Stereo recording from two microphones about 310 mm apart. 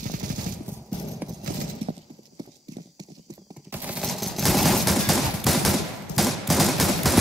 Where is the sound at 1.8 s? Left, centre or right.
Centre.